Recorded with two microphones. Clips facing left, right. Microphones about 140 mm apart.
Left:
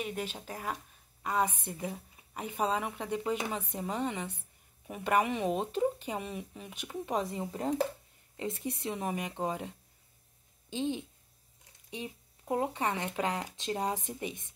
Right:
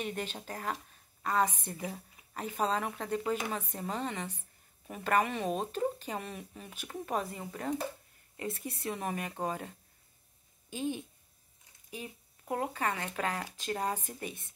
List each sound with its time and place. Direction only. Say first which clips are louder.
0.0 s a woman's voice: even; 5° left (ahead or behind)
7.2 s speech: left 3 dB; 25° left (ahead or behind)